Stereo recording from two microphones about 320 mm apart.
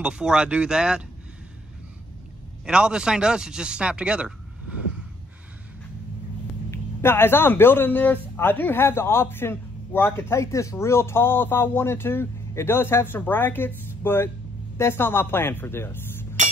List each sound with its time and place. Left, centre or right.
0.0 s speech: centre
2.6 s speech: centre
6.7 s a man's voice: centre
16.4 s chink: right